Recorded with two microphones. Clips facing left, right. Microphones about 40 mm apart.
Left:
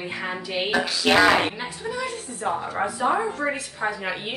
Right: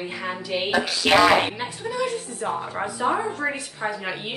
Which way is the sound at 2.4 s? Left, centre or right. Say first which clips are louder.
Left 3 dB; centre.